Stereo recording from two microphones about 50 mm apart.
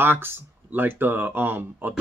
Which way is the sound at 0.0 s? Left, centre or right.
Right.